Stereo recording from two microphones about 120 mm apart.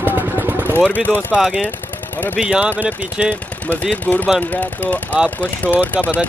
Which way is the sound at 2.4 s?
10° right (ahead or behind).